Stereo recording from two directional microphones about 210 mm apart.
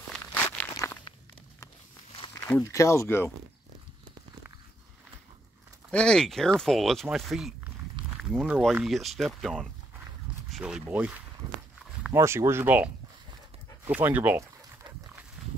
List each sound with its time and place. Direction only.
0.1 s walk: 10° left (ahead or behind)
2.4 s speech: 10° left (ahead or behind)
5.9 s speech: 5° left (ahead or behind)
13.8 s dog: 10° right (ahead or behind)